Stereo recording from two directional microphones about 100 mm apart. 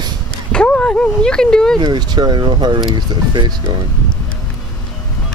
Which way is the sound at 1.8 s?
45° right (ahead or behind).